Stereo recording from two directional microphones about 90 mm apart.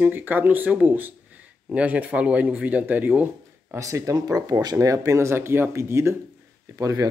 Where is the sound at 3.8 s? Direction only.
35° right (ahead or behind).